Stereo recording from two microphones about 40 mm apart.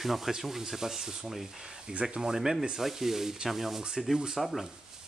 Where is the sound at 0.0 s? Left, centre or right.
Centre.